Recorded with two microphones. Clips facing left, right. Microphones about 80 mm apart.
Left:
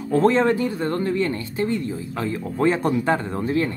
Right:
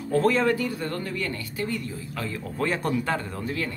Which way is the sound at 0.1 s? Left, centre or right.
Left.